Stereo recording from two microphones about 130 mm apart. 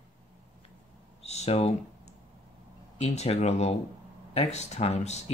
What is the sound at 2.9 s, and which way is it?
Speech, 55° left (ahead or behind).